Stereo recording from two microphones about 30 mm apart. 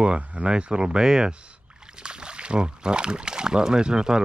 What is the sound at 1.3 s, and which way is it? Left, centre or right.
Speech, right.